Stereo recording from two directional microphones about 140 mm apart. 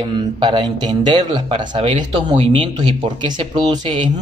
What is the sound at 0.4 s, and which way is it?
Speech, 35° right (ahead or behind).